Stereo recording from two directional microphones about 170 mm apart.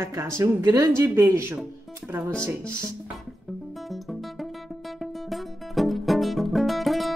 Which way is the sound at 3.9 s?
Centre (ahead or behind).